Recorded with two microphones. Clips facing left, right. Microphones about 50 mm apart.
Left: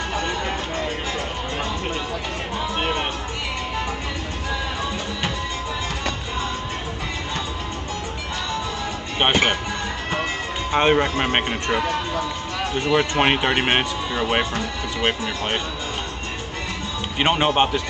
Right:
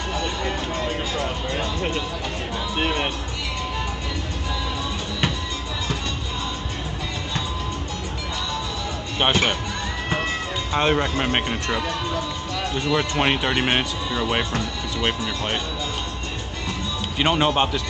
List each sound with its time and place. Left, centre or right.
9.2 s speech: left
10.7 s speech: left
17.2 s speech: left